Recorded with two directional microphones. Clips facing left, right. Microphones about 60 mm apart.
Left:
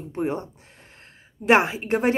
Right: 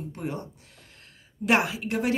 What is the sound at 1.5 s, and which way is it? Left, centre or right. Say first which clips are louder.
Speech: left 5 dB; left.